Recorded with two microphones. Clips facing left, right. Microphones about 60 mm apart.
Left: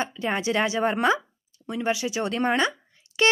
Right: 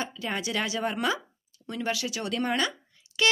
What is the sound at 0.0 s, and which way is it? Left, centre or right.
Speech, left.